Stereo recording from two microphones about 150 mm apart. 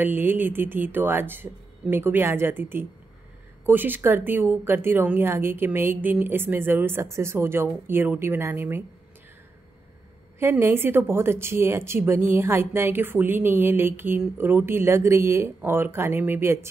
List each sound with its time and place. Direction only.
0.0 s a woman's voice: 15° right (ahead or behind)
10.4 s a woman's voice: 15° right (ahead or behind)